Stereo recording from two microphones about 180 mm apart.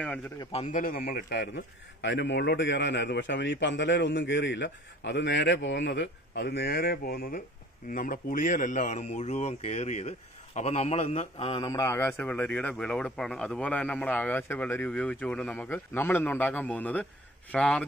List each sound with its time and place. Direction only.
0.4 s a man's voice: 35° left (ahead or behind); by 1.5 s 60° left (ahead or behind)
2.0 s a man's voice: 85° left; by 11.5 s 35° left (ahead or behind)
11.5 s speech: 20° left (ahead or behind); by 17.8 s 5° left (ahead or behind)